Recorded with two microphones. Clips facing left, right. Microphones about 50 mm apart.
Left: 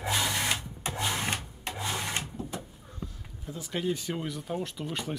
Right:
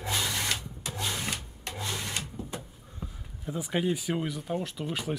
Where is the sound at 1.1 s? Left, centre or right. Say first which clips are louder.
Left 3 dB; left.